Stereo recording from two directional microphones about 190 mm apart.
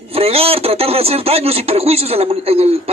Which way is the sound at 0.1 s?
30° right (ahead or behind).